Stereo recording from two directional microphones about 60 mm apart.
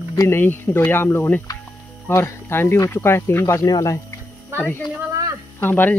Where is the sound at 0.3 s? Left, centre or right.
Left.